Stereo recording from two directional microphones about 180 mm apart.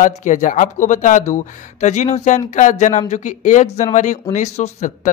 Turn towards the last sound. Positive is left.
turn(degrees=40)  # may be behind; listen again after turning